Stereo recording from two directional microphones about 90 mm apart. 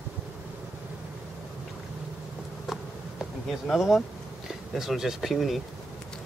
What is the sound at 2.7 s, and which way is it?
Insect, 5° right (ahead or behind).